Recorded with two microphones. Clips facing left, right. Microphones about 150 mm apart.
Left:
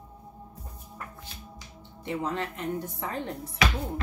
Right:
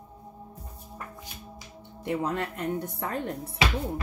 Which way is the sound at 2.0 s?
55° right (ahead or behind).